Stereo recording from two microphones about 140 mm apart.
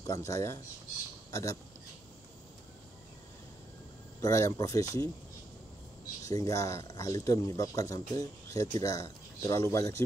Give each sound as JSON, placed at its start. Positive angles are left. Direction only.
{"t": 0.0, "sound": "speech", "side_deg": 20}
{"t": 4.2, "sound": "speech", "side_deg": 25}
{"t": 6.2, "sound": "speech", "side_deg": 25}